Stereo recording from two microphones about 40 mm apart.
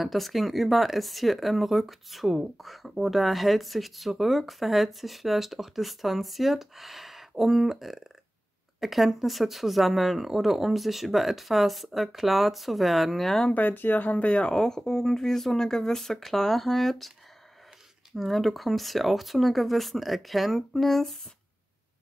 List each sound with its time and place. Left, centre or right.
0.0 s speech: centre
13.5 s speech: left
14.5 s speech: centre
18.1 s speech: centre